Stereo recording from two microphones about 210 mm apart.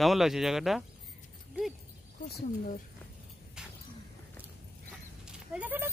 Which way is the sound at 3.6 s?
5° right (ahead or behind).